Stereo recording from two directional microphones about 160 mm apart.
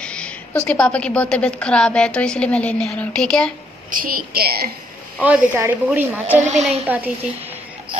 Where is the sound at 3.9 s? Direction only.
60° right (ahead or behind).